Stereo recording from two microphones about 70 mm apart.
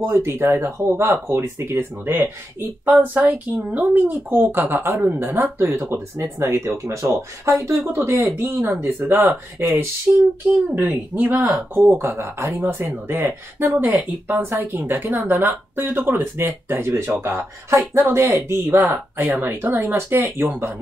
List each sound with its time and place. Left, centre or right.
0.0 s speech: right
7.9 s speech: right
10.1 s a sound: centre
11.1 s speech: right